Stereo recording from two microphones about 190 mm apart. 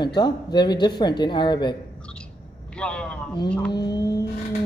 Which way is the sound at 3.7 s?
20° left (ahead or behind).